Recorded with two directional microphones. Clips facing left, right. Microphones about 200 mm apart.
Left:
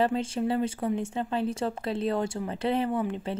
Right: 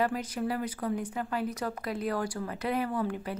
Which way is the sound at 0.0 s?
25° left (ahead or behind).